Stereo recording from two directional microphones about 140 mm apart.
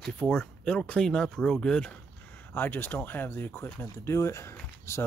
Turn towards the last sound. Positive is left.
turn(degrees=20)  # may be behind; listen again after turning